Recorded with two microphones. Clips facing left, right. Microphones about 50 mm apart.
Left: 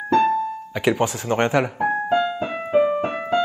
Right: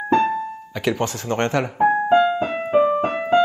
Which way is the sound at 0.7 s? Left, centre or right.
Centre.